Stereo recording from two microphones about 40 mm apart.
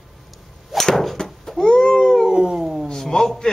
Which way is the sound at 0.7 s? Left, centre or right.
Centre.